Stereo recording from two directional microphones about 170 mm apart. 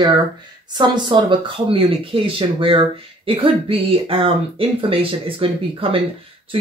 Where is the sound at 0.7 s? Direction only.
25° right (ahead or behind).